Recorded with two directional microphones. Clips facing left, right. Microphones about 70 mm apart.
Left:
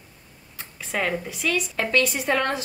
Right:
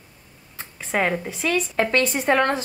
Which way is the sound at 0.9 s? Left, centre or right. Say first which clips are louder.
Right 3 dB; right.